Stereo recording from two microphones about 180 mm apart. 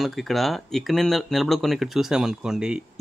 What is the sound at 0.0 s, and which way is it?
Speech, centre (ahead or behind).